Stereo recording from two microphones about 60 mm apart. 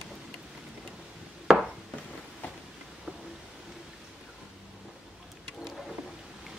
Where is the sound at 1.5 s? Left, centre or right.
Centre.